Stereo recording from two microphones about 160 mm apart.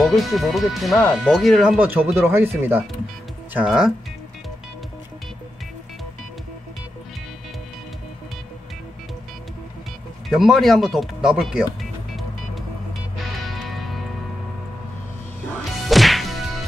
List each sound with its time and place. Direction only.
0.0 s speech: centre (ahead or behind)
1.8 s speech: 10° right (ahead or behind)
10.3 s speech: centre (ahead or behind)
13.7 s music: centre (ahead or behind)
15.9 s whack: centre (ahead or behind)